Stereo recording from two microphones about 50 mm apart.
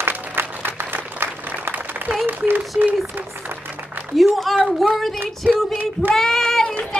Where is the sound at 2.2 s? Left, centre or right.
Right.